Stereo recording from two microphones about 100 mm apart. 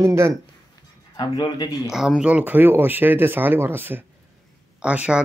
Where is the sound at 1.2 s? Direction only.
40° left (ahead or behind).